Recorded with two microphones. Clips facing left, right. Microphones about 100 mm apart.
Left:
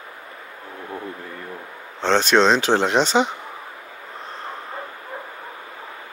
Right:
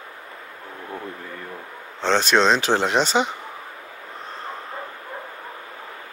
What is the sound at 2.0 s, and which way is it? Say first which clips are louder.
Speech: left 2 dB; 10° right (ahead or behind).